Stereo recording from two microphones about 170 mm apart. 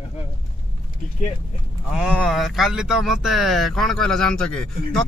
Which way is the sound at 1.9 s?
5° right (ahead or behind).